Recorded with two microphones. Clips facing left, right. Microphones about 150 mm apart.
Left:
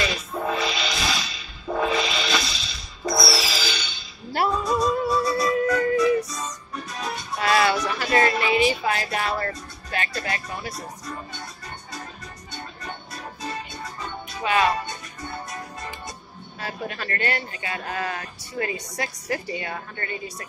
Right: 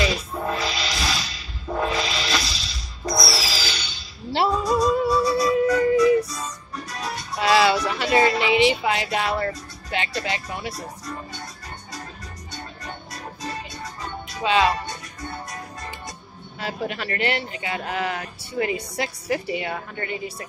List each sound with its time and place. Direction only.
0.0 s music: centre (ahead or behind)
4.3 s music: 25° right (ahead or behind)
4.6 s music: centre (ahead or behind)
5.6 s music: 20° right (ahead or behind)
7.3 s a sound: 20° right (ahead or behind)
9.8 s speech: 20° right (ahead or behind)
14.4 s speech: 20° right (ahead or behind)
16.5 s speech: 20° right (ahead or behind)